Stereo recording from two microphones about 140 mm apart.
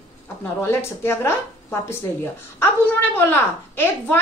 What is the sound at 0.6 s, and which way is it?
Speech, 15° left (ahead or behind).